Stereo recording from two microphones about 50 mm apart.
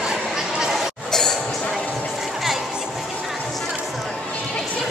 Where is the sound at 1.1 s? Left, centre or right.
Centre.